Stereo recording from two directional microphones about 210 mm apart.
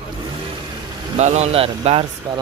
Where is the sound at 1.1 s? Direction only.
35° right (ahead or behind).